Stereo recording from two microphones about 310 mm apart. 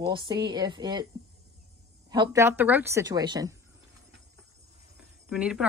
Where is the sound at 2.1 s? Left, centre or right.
Centre.